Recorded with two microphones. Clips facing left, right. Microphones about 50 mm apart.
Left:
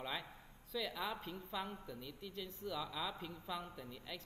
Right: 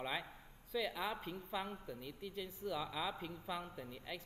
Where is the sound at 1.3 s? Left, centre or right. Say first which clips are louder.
Right 1 dB; centre.